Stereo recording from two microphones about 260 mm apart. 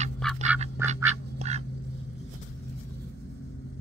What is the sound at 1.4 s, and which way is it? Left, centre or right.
Duck, right.